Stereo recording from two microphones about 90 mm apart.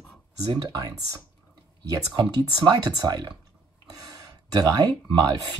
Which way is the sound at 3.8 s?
45° right (ahead or behind).